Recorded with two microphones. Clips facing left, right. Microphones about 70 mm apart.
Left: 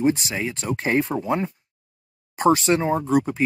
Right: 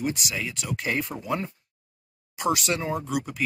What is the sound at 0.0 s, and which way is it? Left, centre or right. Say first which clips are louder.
Speech: left 8 dB; left.